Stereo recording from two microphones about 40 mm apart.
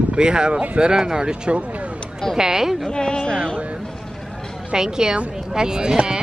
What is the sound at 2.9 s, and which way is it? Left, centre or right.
Speech, left.